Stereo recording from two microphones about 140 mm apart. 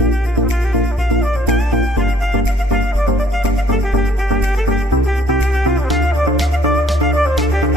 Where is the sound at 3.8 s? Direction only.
Centre (ahead or behind).